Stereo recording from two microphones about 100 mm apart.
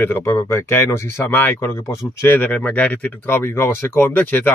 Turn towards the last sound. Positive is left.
turn(degrees=20)  # may be behind; listen again after turning